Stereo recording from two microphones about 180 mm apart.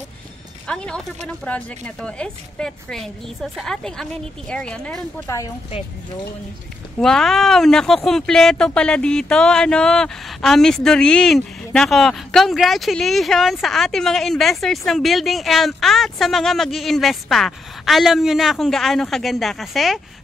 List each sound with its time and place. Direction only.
0.7 s speech: 5° left (ahead or behind)
5.2 s speech: 20° left (ahead or behind)
7.0 s speech: centre (ahead or behind)